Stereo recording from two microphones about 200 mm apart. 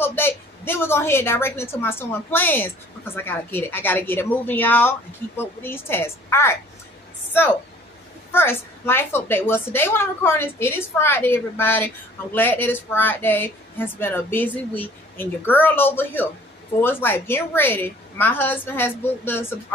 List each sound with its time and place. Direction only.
0.0 s a woman's voice: 10° left (ahead or behind)
8.3 s a woman's voice: 10° left (ahead or behind)